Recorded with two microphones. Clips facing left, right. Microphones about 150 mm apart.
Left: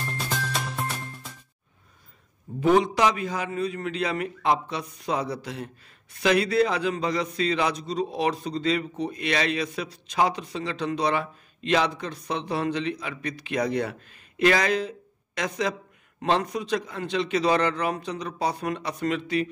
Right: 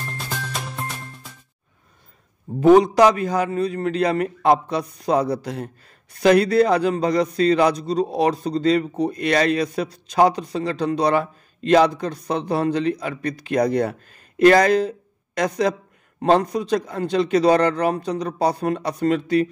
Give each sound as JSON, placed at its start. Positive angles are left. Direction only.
{"t": 0.2, "sound": "music", "side_deg": 0}
{"t": 2.6, "sound": "a man's voice", "side_deg": -40}